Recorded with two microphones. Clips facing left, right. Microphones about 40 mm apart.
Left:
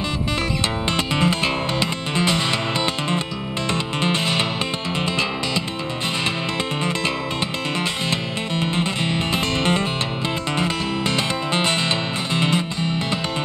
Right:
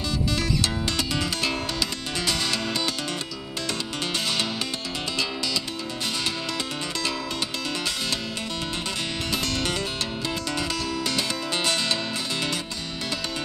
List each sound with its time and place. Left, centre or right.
0.8 s music: left
3.7 s music: left
8.1 s music: left